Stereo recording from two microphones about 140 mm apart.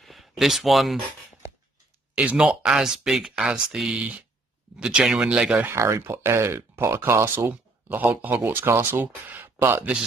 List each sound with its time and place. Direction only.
0.0 s a sound: centre (ahead or behind)
2.1 s speech: 5° right (ahead or behind)
5.7 s speech: 20° right (ahead or behind)